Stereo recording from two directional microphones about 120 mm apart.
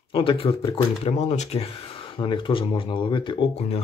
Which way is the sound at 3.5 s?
60° left (ahead or behind).